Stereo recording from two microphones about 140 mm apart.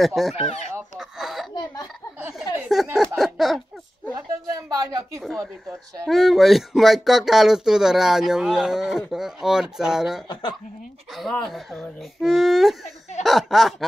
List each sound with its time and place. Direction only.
0.0 s speech: centre (ahead or behind)
0.9 s a sound: centre (ahead or behind)
2.7 s speech: centre (ahead or behind)
4.1 s a woman's voice: 25° right (ahead or behind)
5.2 s speech: centre (ahead or behind)
10.2 s speech: 30° left (ahead or behind)
11.4 s speech: centre (ahead or behind)